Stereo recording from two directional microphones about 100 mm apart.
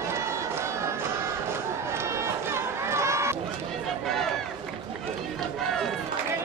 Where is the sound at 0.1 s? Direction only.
30° right (ahead or behind).